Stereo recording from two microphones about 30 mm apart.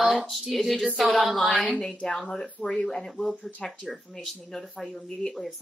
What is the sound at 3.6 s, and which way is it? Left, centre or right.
Speech, centre.